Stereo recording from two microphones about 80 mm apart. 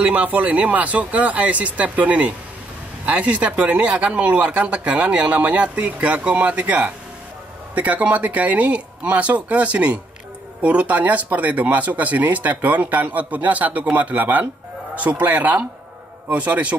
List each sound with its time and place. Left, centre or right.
0.0 s speech: centre